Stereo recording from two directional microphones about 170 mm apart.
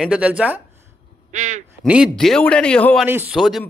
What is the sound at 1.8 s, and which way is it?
A man's voice, 5° right (ahead or behind).